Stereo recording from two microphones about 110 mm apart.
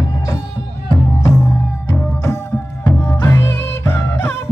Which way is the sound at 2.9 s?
25° left (ahead or behind).